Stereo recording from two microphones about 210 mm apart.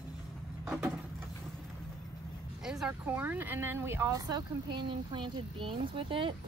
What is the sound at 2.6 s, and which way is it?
Speech, 5° right (ahead or behind).